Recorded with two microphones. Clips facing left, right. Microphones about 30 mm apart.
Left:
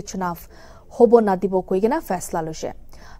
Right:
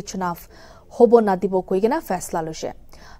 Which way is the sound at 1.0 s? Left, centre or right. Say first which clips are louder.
Even; centre.